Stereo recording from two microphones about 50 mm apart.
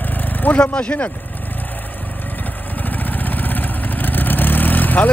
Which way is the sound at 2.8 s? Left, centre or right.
Left.